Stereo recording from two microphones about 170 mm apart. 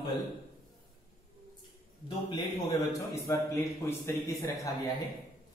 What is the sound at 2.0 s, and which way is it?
A man's voice, 20° left (ahead or behind).